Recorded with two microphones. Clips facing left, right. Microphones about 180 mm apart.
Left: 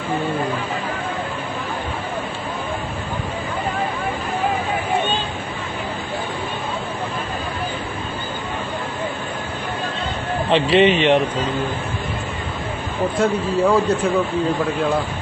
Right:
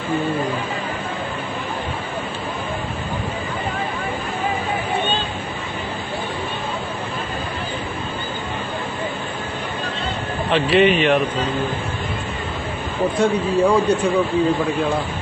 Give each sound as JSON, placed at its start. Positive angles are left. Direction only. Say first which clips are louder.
{"t": 10.5, "sound": "a man's voice", "louder": "left 1 dB", "side_deg": 25}
{"t": 13.2, "sound": "a man's voice", "louder": "right 1 dB", "side_deg": 0}